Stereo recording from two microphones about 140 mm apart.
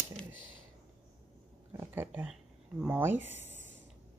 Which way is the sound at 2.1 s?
5° right (ahead or behind).